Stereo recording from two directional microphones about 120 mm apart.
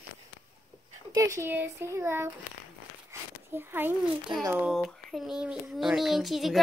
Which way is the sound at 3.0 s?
20° right (ahead or behind).